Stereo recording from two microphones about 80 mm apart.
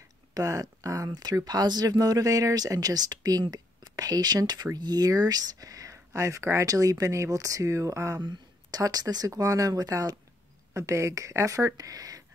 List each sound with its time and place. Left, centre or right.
0.3 s speech: right
8.2 s a sound: right
8.8 s speech: right